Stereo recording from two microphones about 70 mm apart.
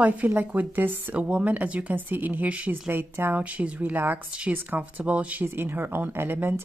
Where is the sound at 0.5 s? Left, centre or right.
Right.